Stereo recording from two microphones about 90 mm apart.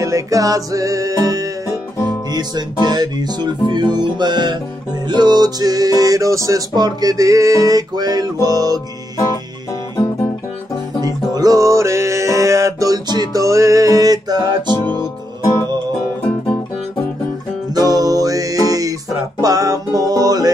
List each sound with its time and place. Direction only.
0.0 s music: 35° right (ahead or behind)
6.7 s music: 50° right (ahead or behind)
11.0 s music: 45° right (ahead or behind)
15.0 s music: 30° left (ahead or behind)
17.7 s music: 45° right (ahead or behind)